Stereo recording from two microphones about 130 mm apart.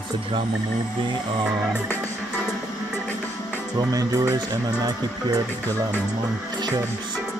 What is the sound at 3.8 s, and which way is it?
Speech, 30° right (ahead or behind).